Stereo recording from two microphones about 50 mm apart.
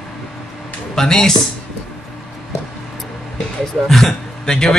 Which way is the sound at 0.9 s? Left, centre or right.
Centre.